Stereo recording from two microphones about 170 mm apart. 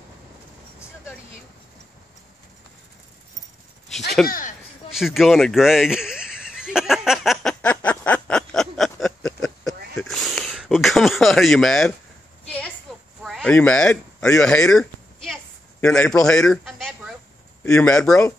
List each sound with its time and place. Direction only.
4.3 s speech: 50° left (ahead or behind)
4.9 s a sound: centre (ahead or behind)
13.2 s a man's voice: 5° left (ahead or behind)